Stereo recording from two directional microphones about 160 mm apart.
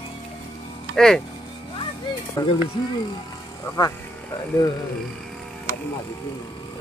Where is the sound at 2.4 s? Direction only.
20° left (ahead or behind).